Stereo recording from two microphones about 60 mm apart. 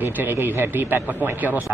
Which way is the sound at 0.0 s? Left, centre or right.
Right.